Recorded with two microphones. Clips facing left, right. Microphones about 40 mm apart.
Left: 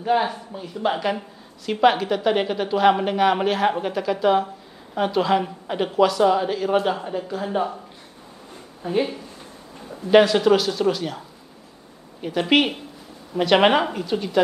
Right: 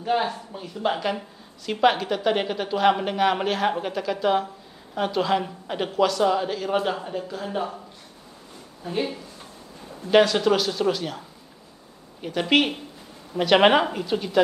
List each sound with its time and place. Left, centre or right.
0.0 s a woman's voice: centre
8.8 s speech: left
10.1 s a woman's voice: centre